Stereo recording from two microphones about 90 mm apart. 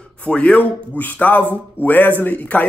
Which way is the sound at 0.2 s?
15° left (ahead or behind).